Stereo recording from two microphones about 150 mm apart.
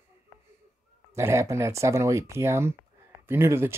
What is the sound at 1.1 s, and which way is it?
Speech, 20° right (ahead or behind).